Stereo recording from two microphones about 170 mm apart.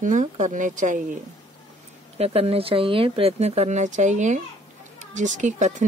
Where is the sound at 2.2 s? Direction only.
35° right (ahead or behind).